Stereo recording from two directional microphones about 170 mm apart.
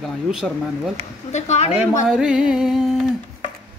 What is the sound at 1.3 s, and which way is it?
Speech, 40° left (ahead or behind).